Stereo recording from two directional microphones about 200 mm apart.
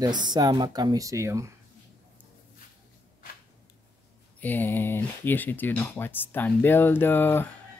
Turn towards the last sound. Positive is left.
turn(degrees=10)  # may be behind; listen again after turning